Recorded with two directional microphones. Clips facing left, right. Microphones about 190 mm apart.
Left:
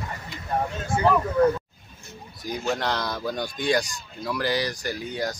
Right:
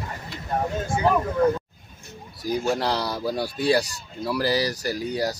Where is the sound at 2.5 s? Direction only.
10° right (ahead or behind).